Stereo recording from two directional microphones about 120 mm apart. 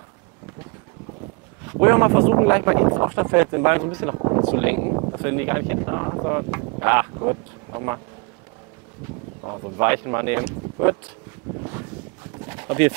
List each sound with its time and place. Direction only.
1.7 s speech: 15° right (ahead or behind)
9.4 s speech: 20° right (ahead or behind)
12.4 s a sound: 15° right (ahead or behind)